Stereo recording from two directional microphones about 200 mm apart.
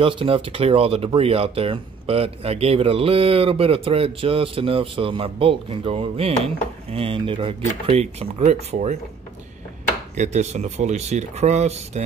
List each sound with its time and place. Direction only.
0.0 s speech: 25° right (ahead or behind)
10.1 s speech: 35° right (ahead or behind)